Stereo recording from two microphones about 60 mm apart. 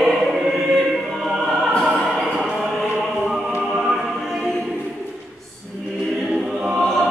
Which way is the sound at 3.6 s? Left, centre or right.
Centre.